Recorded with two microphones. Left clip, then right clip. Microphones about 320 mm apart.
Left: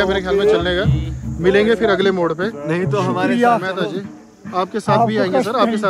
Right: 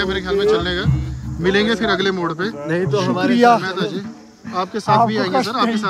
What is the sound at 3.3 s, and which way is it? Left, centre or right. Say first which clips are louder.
Speech: right 3 dB; right.